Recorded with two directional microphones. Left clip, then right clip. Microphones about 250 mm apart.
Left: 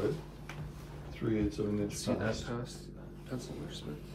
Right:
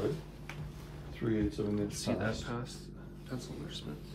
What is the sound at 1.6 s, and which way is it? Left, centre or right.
Speech, centre.